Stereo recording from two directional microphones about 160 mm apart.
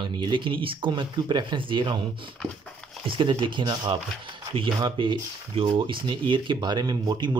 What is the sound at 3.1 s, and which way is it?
Speech, 30° right (ahead or behind).